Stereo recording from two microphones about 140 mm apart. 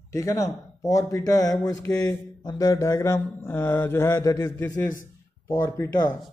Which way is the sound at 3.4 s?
15° left (ahead or behind).